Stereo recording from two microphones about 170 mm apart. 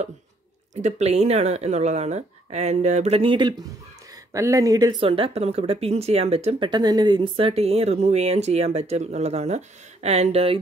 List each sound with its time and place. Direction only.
0.7 s speech: 40° right (ahead or behind)
4.3 s speech: 20° right (ahead or behind)
5.0 s speech: 35° right (ahead or behind)
6.7 s speech: 25° right (ahead or behind)